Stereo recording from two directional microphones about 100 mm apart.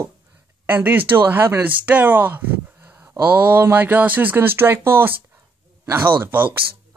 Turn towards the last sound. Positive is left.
turn(degrees=-20)  # may be behind; listen again after turning